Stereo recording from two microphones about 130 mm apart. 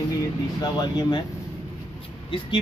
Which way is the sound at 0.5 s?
30° left (ahead or behind).